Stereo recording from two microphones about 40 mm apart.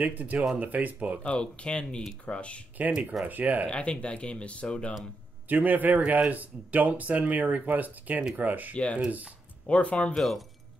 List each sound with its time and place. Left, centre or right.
0.0 s speech: right
1.2 s speech: left
3.3 s speech: right
3.6 s speech: left
5.5 s speech: right
8.7 s speech: left
9.0 s speech: right
9.7 s speech: left
10.1 s speech: centre